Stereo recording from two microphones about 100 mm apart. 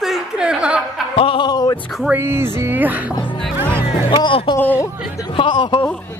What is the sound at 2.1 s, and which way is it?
Speech, 25° right (ahead or behind).